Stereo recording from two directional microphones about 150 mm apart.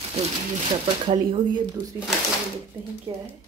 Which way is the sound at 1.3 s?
25° right (ahead or behind).